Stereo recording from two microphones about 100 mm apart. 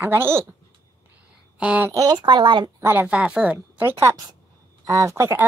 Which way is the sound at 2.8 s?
20° right (ahead or behind).